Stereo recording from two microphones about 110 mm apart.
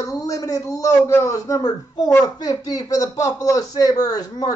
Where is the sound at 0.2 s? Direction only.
30° left (ahead or behind).